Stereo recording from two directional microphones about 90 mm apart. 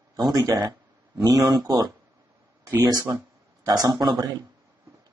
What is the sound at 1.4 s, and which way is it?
Speech, 50° right (ahead or behind).